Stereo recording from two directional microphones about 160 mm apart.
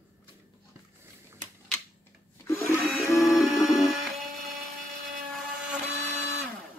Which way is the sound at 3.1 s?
Centre (ahead or behind).